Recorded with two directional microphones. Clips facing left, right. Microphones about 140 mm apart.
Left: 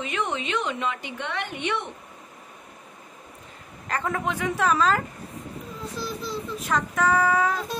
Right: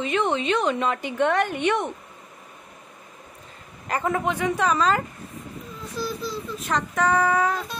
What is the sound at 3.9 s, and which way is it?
Speech, 15° right (ahead or behind).